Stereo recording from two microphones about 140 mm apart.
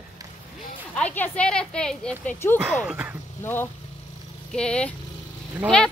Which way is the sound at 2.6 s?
10° right (ahead or behind).